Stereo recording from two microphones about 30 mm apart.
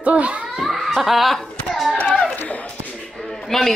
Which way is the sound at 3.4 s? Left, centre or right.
Centre.